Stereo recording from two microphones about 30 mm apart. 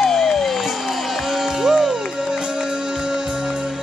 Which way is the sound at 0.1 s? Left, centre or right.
Centre.